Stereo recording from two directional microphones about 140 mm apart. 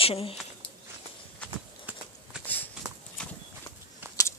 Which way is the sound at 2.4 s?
10° left (ahead or behind).